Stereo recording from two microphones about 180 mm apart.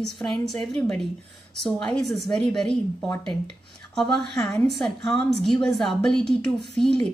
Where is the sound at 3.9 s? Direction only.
5° left (ahead or behind).